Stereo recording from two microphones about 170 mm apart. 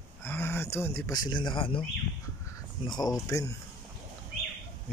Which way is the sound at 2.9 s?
25° left (ahead or behind).